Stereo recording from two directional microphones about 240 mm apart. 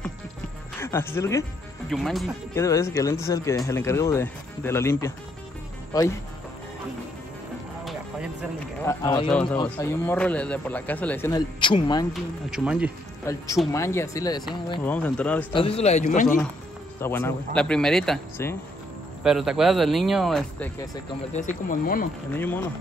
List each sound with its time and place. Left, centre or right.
0.7 s speech: centre
1.9 s speech: centre
2.5 s speech: centre
7.8 s music: centre
8.8 s speech: centre
9.3 s speech: centre
12.1 s speech: centre
13.2 s speech: centre
15.5 s speech: left
17.0 s speech: centre
21.6 s speech: left
22.3 s speech: centre